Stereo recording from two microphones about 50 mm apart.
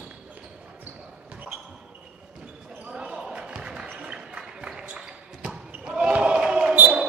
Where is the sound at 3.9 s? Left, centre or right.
Right.